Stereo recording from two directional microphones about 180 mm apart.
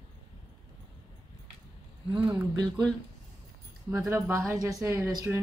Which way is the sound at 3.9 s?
15° right (ahead or behind).